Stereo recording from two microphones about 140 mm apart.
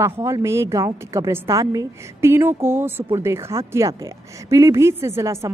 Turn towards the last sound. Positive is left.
turn(degrees=-20)  # may be behind; listen again after turning